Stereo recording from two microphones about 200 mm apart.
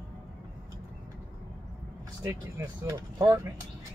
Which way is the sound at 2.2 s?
15° right (ahead or behind).